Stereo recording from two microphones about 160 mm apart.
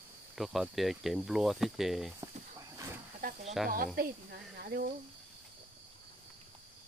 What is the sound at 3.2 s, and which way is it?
Snake, 65° right (ahead or behind).